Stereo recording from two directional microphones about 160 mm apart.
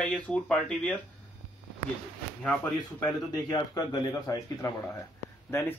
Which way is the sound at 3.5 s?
25° left (ahead or behind).